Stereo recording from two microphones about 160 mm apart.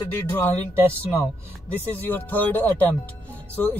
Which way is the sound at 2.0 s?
10° left (ahead or behind).